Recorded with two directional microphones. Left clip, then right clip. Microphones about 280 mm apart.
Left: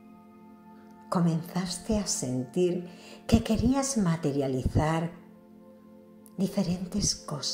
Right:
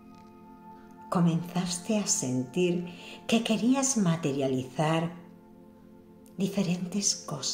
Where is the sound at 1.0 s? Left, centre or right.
Centre.